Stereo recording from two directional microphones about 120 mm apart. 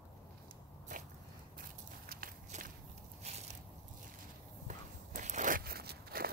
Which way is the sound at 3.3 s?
65° right (ahead or behind).